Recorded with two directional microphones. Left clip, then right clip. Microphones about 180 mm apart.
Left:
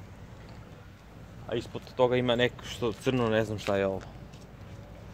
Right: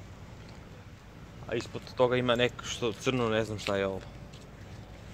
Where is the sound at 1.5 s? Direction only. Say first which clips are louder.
Left 1 dB; 15° left (ahead or behind); by 4.0 s 30° left (ahead or behind).